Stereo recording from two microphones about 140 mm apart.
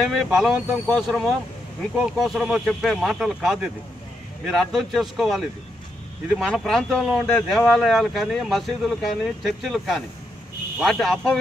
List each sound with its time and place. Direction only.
0.0 s speech: centre (ahead or behind)